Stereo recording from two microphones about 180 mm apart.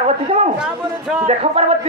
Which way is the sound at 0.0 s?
35° right (ahead or behind).